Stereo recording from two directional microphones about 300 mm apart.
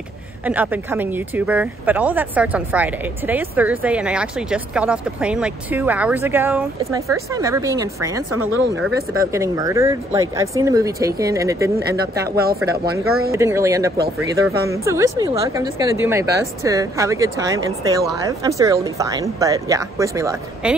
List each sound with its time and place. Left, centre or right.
0.5 s speech: centre
9.3 s speech: centre
12.3 s speech: right
13.3 s speech: centre